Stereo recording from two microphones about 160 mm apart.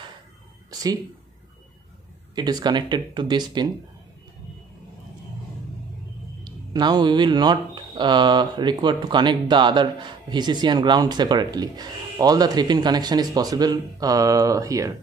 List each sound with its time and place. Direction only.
0.7 s a sound: 25° right (ahead or behind)
2.3 s speech: 25° right (ahead or behind)
6.4 s speech: 25° right (ahead or behind)